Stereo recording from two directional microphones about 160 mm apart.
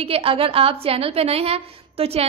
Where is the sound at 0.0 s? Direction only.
35° right (ahead or behind).